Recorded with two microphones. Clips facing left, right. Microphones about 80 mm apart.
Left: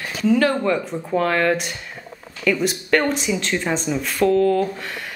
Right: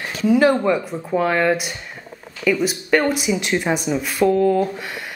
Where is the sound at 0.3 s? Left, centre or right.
Centre.